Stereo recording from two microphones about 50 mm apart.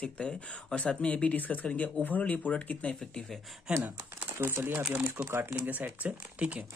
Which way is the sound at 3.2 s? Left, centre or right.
Centre.